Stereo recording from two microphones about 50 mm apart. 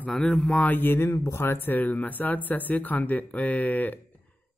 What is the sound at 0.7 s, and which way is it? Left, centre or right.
Speech, left.